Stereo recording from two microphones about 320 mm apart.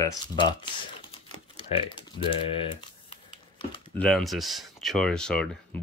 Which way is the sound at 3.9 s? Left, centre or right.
Centre.